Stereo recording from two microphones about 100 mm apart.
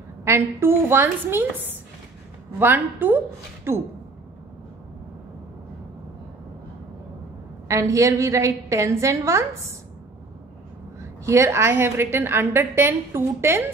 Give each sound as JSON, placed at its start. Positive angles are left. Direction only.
{"t": 0.2, "sound": "a woman's voice", "side_deg": -25}
{"t": 2.6, "sound": "a woman's voice", "side_deg": -20}
{"t": 7.6, "sound": "a woman's voice", "side_deg": -30}
{"t": 11.0, "sound": "a woman's voice", "side_deg": -30}